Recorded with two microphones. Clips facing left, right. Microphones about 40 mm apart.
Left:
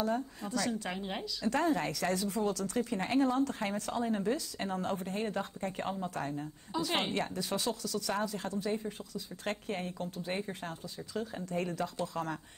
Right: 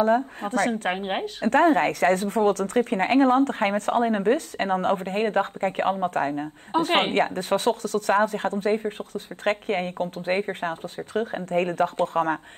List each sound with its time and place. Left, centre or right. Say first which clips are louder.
0.0 s a woman's voice: right 12 dB; right